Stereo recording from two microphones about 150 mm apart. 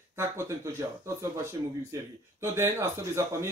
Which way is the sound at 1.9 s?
20° right (ahead or behind).